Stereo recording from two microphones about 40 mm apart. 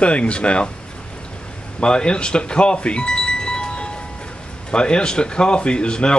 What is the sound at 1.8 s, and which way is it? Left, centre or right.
Music, left.